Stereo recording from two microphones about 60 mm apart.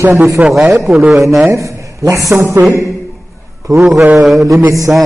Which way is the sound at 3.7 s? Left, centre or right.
Right.